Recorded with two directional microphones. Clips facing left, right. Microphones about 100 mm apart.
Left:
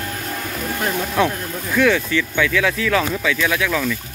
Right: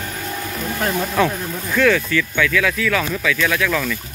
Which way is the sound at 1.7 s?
15° left (ahead or behind).